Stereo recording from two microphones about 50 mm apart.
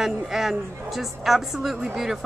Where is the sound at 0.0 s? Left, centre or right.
Centre.